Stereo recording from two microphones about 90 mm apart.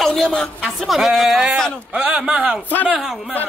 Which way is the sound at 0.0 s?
5° left (ahead or behind).